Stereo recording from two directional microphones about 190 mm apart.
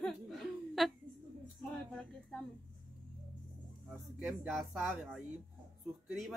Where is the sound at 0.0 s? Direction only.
Centre (ahead or behind).